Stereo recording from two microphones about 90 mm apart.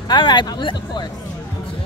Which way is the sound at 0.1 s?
55° left (ahead or behind).